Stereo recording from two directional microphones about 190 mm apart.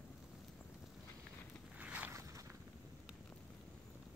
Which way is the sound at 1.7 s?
5° right (ahead or behind).